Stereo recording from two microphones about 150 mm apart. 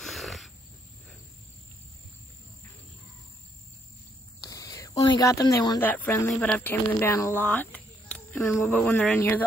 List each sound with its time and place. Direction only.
0.0 s wild animals: centre (ahead or behind)
4.4 s cricket: 25° left (ahead or behind)
4.9 s speech: 30° left (ahead or behind)
5.8 s speech: 15° left (ahead or behind)